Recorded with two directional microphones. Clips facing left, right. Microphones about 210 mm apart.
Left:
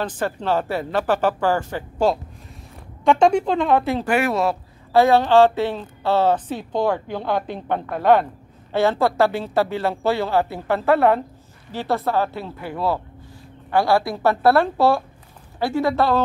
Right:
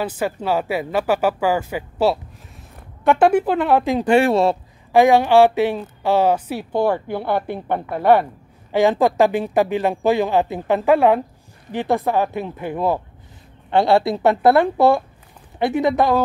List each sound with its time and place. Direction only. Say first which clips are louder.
0.0 s a woman's voice: right 2 dB; 10° right (ahead or behind)
4.1 s a woman's voice: right 6 dB; 30° right (ahead or behind)
4.9 s a woman's voice: right 2 dB; 15° right (ahead or behind)